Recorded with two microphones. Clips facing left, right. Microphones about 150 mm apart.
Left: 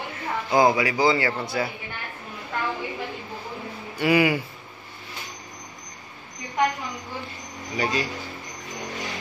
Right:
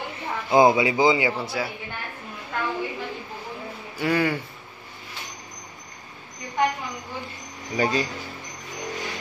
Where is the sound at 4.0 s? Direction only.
10° left (ahead or behind).